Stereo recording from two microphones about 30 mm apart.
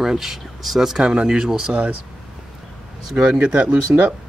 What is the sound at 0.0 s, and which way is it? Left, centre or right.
Speech, centre.